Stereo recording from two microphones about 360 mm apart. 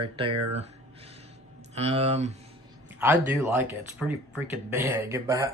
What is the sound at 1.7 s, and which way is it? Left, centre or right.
Speech, centre.